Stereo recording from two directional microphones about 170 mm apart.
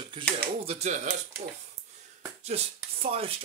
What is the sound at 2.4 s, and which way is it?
Speech, 35° right (ahead or behind).